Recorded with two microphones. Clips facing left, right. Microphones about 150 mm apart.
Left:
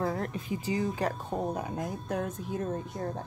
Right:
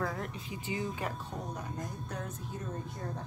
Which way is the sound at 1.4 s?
60° left (ahead or behind).